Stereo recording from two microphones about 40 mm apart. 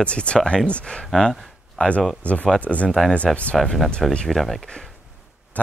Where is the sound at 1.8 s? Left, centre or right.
Left.